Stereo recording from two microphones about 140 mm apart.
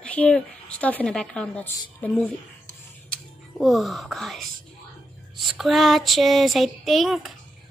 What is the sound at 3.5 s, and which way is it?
Speech, centre (ahead or behind).